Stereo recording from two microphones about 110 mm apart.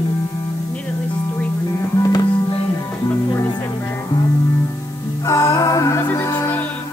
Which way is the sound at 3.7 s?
20° left (ahead or behind).